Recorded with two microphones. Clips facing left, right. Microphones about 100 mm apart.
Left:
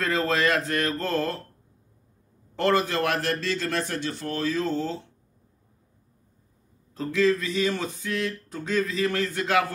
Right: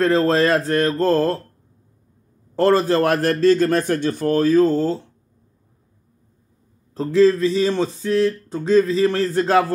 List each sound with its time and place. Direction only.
0.0 s speech: 30° right (ahead or behind)
2.5 s a man's voice: 35° right (ahead or behind)
6.9 s speech: 35° right (ahead or behind)